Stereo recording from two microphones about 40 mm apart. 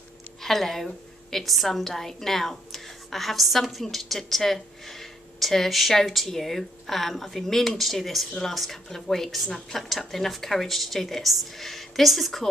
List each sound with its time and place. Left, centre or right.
0.4 s a woman's voice: centre